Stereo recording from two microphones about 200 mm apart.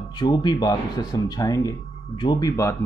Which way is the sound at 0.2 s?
20° left (ahead or behind).